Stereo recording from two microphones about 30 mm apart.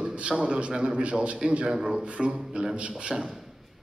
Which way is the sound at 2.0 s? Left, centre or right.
Right.